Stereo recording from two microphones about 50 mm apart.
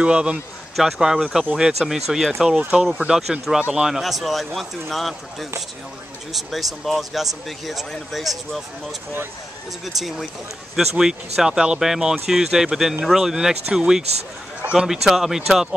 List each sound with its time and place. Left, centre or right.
0.0 s a man's voice: right
0.7 s speech: centre
9.9 s speech: centre